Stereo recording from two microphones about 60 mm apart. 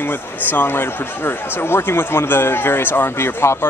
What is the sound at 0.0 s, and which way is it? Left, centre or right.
Speech, left.